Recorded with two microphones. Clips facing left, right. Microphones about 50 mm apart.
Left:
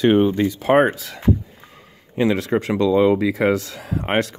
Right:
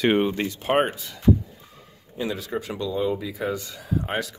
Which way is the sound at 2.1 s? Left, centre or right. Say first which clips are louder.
Left 9 dB; left.